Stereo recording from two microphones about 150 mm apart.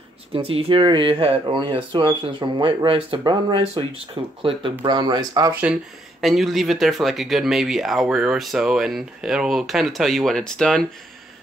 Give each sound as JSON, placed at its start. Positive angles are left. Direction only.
{"t": 0.3, "sound": "speech", "side_deg": -40}
{"t": 6.2, "sound": "speech", "side_deg": 0}